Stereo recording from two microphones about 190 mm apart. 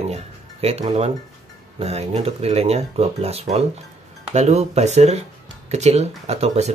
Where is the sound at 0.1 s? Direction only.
35° right (ahead or behind).